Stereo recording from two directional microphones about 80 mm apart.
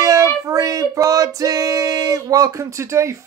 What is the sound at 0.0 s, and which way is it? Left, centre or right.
Female singing, right.